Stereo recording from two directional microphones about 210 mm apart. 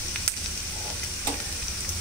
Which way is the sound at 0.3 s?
5° left (ahead or behind).